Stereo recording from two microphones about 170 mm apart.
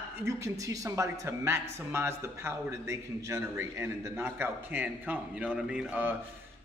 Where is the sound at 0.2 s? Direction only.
20° right (ahead or behind).